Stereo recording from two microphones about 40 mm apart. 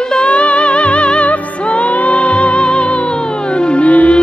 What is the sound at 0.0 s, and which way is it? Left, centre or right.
Music, left.